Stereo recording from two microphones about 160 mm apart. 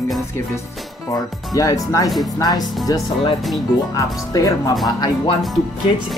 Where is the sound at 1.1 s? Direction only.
20° left (ahead or behind).